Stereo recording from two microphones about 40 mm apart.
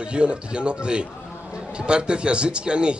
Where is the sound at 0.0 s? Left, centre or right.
Right.